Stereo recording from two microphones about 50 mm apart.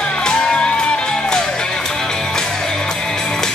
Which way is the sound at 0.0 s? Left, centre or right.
Centre.